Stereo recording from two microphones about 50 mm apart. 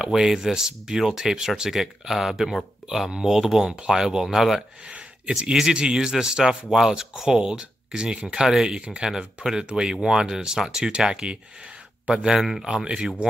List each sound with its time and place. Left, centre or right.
0.0 s speech: centre
4.8 s a sound: centre
5.4 s speech: centre
12.1 s speech: centre
12.4 s speech: centre
12.6 s speech: centre